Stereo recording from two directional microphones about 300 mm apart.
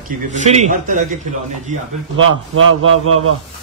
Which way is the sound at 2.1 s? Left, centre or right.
Right.